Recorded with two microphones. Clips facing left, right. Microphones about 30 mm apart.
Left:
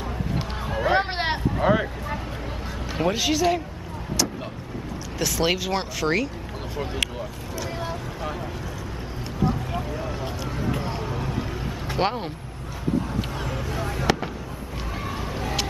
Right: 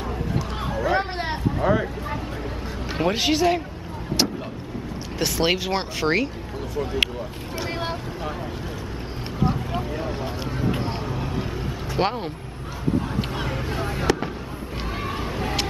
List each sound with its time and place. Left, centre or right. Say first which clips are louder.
0.7 s hubbub: left 1 dB; left
1.1 s vehicle: left 2 dB; left
1.6 s vehicle: even; centre
3.0 s speech: right 2 dB; right
4.1 s vehicle: right 3 dB; right
5.2 s speech: right 1 dB; centre
10.7 s a sound: right 1 dB; right
12.0 s speech: right 1 dB; centre
13.4 s vehicle: right 2 dB; right
15.0 s vehicle: right 2 dB; right